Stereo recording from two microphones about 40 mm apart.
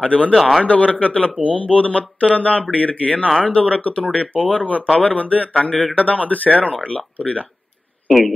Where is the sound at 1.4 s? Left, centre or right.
Right.